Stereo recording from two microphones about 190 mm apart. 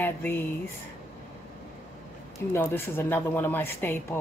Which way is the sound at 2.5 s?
10° left (ahead or behind).